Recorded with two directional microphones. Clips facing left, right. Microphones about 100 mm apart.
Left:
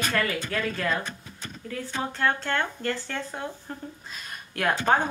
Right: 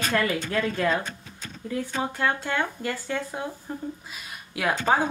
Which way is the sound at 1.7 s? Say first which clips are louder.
Right 3 dB; 15° right (ahead or behind).